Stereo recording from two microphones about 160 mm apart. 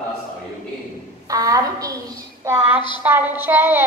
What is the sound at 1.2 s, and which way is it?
A woman's voice, 20° right (ahead or behind).